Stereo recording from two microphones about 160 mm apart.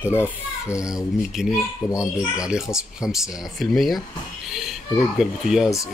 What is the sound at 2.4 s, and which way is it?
Speech, 5° right (ahead or behind).